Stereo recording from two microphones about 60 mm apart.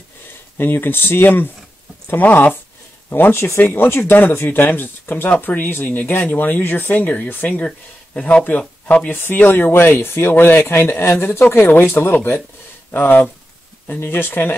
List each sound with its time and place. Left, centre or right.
0.6 s speech: left
9.1 s speech: left